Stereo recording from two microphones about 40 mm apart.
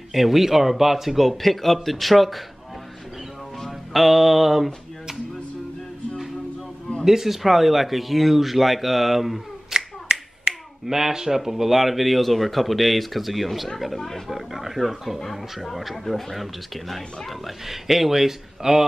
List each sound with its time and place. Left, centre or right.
0.1 s speech: centre
3.6 s a sound: centre
7.1 s speech: centre
9.8 s finger snapping: right
10.9 s speech: centre
14.3 s speech: centre